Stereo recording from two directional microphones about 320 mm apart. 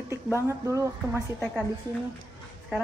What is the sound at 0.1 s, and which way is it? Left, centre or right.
A woman's voice, centre.